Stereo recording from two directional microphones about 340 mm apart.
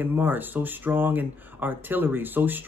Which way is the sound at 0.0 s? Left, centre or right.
Centre.